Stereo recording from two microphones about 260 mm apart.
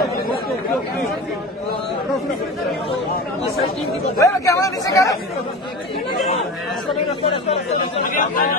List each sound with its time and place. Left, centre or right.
4.2 s speech: centre
8.0 s speech: left